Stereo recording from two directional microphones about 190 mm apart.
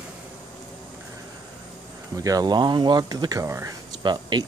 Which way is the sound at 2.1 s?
20° right (ahead or behind).